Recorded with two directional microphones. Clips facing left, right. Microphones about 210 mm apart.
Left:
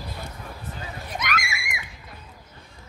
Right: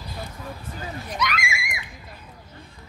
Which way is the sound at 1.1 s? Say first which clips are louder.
Right 2 dB; 45° left (ahead or behind).